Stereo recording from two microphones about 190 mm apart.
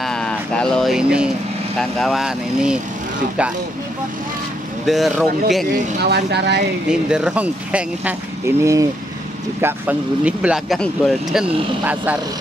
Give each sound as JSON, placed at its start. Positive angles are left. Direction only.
{"t": 0.0, "sound": "a sound", "side_deg": 5}
{"t": 1.8, "sound": "speech", "side_deg": 0}
{"t": 4.8, "sound": "speech", "side_deg": 0}
{"t": 6.0, "sound": "speech", "side_deg": -60}
{"t": 6.9, "sound": "speech", "side_deg": -5}